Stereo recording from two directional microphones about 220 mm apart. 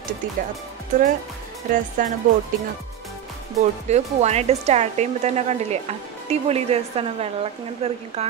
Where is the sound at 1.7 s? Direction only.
40° right (ahead or behind).